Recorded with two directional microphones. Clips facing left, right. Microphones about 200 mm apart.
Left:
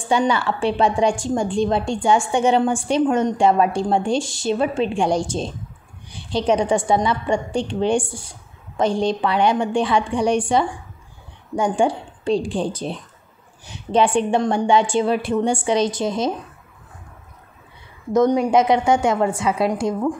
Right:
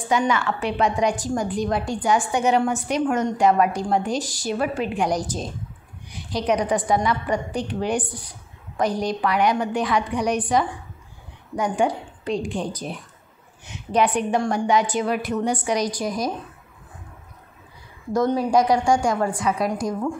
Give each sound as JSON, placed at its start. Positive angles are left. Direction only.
{"t": 0.0, "sound": "a woman's voice", "side_deg": 30}
{"t": 18.1, "sound": "a woman's voice", "side_deg": 20}